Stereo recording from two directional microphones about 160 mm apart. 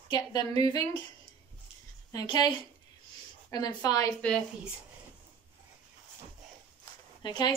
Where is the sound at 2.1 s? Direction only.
25° left (ahead or behind).